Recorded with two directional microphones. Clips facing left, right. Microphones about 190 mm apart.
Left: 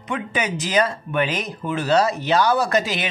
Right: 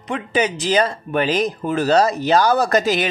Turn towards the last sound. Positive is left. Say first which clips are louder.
# right 4 dB
turn(degrees=-40)  # may be behind; listen again after turning